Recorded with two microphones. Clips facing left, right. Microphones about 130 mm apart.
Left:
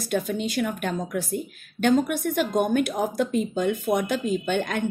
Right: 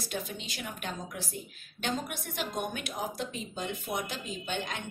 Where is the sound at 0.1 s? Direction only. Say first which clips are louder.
Left 14 dB; 55° left (ahead or behind).